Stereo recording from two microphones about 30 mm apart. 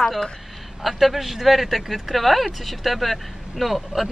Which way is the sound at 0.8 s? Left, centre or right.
Centre.